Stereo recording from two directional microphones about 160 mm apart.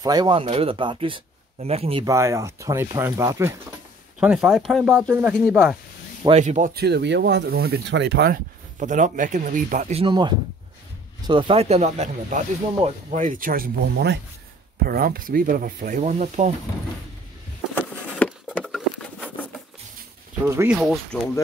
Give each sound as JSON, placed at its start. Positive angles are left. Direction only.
{"t": 0.0, "sound": "speech", "side_deg": -25}
{"t": 2.0, "sound": "speech", "side_deg": -20}
{"t": 4.2, "sound": "speech", "side_deg": -5}
{"t": 6.3, "sound": "speech", "side_deg": -50}
{"t": 6.7, "sound": "speech", "side_deg": -90}
{"t": 8.7, "sound": "speech", "side_deg": -50}
{"t": 9.9, "sound": "speech", "side_deg": -30}
{"t": 14.9, "sound": "speech", "side_deg": -65}
{"t": 17.7, "sound": "a sound", "side_deg": 10}
{"t": 18.6, "sound": "patter", "side_deg": 0}
{"t": 20.4, "sound": "speech", "side_deg": -15}
{"t": 20.7, "sound": "speech", "side_deg": 0}